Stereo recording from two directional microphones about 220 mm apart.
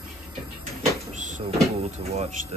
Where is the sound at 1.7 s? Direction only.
25° right (ahead or behind).